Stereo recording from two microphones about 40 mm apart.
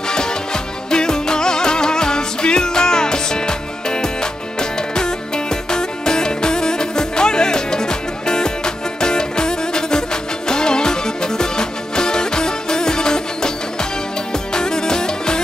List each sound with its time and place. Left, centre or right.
0.8 s music: centre
14.5 s music: centre